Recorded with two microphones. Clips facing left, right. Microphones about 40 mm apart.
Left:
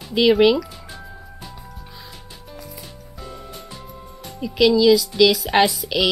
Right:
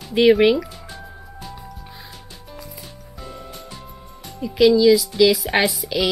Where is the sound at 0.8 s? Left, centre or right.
Centre.